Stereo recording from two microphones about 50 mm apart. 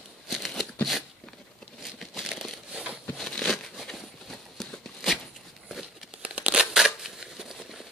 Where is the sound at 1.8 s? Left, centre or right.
Centre.